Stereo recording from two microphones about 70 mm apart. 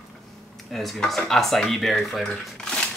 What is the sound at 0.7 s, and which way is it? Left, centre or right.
Speech, centre.